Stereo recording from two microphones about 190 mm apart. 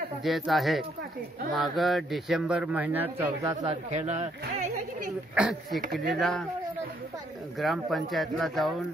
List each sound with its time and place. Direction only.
0.2 s speech: centre (ahead or behind)
3.6 s speech: 35° right (ahead or behind)
5.3 s speech: 5° right (ahead or behind)
7.5 s speech: centre (ahead or behind)